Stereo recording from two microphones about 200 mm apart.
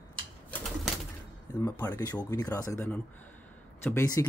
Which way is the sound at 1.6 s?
15° left (ahead or behind).